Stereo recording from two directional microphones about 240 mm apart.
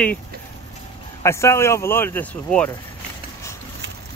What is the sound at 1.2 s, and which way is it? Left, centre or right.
Speech, centre.